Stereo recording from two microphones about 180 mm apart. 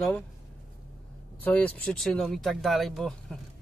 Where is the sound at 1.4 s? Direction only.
10° left (ahead or behind).